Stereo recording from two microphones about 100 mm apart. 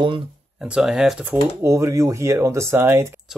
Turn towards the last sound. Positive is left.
turn(degrees=-25)  # may be behind; listen again after turning